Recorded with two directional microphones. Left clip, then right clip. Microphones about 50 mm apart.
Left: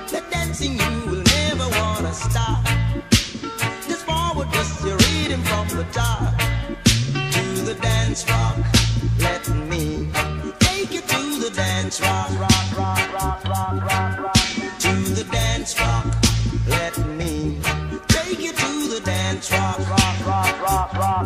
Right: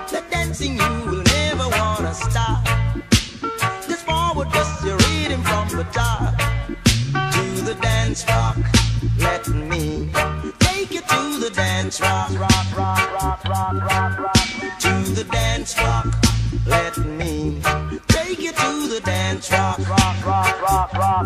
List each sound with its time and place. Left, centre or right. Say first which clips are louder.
0.3 s music: right 2 dB; left